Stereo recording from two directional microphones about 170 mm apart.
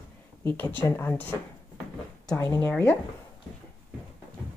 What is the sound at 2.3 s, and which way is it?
Speech, 15° left (ahead or behind).